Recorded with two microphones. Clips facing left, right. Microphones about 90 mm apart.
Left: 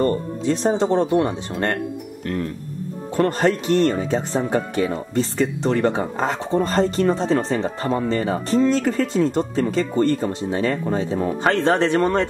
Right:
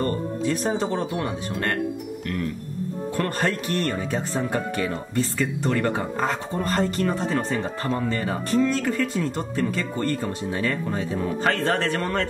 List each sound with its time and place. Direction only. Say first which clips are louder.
0.0 s speech: left 4 dB; 25° left (ahead or behind)
3.2 s speech: left 7 dB; 25° left (ahead or behind)
11.4 s speech: left 5 dB; 20° left (ahead or behind)